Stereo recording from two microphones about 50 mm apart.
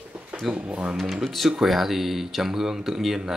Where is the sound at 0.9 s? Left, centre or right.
Centre.